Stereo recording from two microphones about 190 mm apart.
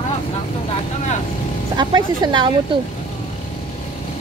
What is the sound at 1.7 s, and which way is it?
Speech, 20° right (ahead or behind).